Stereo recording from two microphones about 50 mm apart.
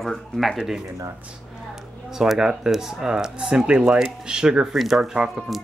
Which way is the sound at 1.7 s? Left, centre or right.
Centre.